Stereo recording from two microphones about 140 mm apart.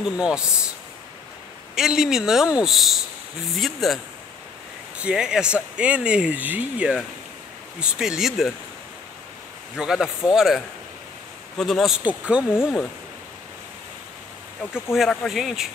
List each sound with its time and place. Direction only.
0.0 s speech: 5° right (ahead or behind)
1.8 s speech: 5° right (ahead or behind)
9.8 s speech: 5° right (ahead or behind)
12.4 s speech: 15° left (ahead or behind)
14.7 s speech: centre (ahead or behind)